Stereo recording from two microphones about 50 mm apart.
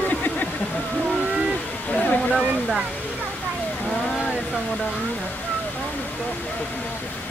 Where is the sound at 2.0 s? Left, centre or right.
Left.